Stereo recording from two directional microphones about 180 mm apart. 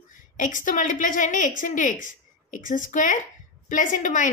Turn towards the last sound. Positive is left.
turn(degrees=45)  # may be behind; listen again after turning